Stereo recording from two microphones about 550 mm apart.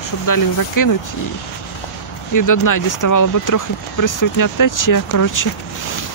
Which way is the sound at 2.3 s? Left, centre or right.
Left.